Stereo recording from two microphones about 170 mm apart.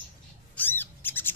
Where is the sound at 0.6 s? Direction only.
10° left (ahead or behind).